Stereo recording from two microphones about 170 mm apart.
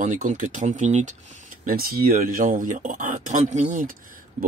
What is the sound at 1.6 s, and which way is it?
Speech, 60° right (ahead or behind).